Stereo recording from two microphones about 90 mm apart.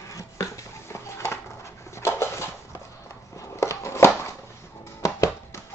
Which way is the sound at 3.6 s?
35° left (ahead or behind).